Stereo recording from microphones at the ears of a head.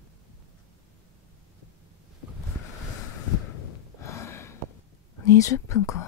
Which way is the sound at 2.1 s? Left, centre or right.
Left.